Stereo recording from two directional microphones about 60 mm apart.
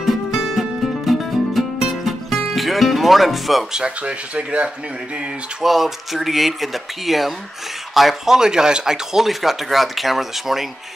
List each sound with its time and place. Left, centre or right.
0.0 s music: centre
3.8 s speech: centre
5.6 s speech: centre